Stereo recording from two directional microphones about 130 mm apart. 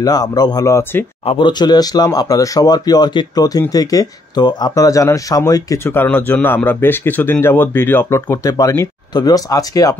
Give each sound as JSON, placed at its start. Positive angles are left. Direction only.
{"t": 0.0, "sound": "speech", "side_deg": 30}
{"t": 1.2, "sound": "speech", "side_deg": 40}
{"t": 5.9, "sound": "speech", "side_deg": 15}